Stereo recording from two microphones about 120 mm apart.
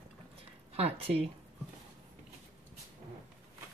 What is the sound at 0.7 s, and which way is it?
Speech, 55° right (ahead or behind).